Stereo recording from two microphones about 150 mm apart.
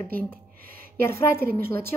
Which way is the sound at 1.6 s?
85° right.